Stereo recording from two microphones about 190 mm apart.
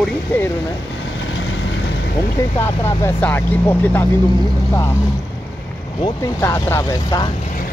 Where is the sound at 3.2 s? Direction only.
10° left (ahead or behind).